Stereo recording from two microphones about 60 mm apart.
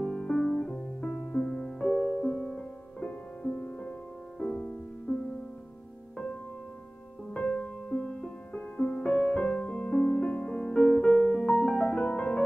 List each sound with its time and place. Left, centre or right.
0.0 s music: centre
5.1 s music: left
7.3 s music: left